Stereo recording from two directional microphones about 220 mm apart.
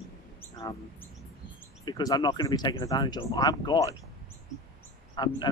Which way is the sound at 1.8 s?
20° left (ahead or behind).